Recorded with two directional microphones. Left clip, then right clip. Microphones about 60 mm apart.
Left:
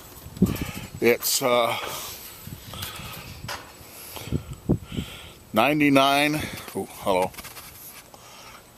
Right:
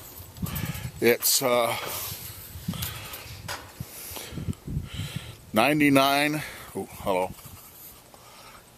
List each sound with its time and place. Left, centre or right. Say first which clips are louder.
0.5 s speech: left 4 dB; right
2.6 s a sound: even; right
6.1 s speech: left 3 dB; centre